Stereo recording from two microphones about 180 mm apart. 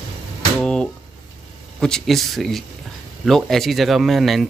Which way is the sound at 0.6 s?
5° left (ahead or behind).